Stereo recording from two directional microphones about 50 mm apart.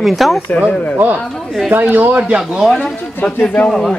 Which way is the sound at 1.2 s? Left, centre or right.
Centre.